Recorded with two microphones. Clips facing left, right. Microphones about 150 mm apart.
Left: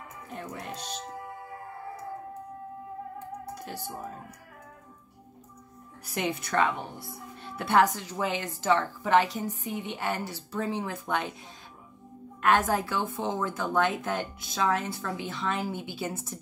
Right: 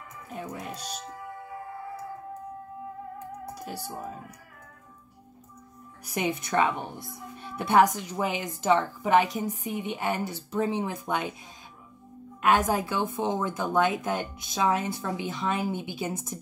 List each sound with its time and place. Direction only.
0.3 s a woman's voice: 10° right (ahead or behind)
3.5 s a woman's voice: 10° right (ahead or behind)
6.0 s a woman's voice: 15° right (ahead or behind)
12.4 s a woman's voice: 15° right (ahead or behind)